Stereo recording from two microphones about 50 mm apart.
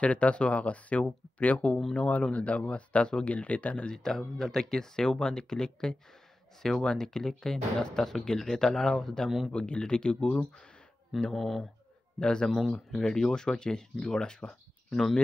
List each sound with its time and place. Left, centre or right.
0.0 s speech: left
3.9 s speech: centre
9.5 s speech: left
11.3 s speech: centre